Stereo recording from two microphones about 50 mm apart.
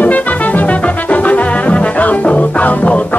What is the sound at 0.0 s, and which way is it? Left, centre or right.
Music, left.